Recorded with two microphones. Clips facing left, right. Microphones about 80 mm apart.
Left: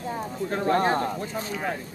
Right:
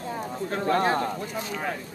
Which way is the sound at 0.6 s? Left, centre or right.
Left.